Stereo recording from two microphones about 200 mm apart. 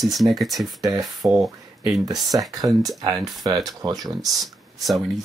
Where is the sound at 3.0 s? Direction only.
20° right (ahead or behind).